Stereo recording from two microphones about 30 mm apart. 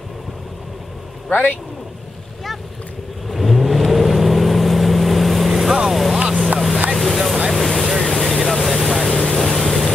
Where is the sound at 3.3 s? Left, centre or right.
Centre.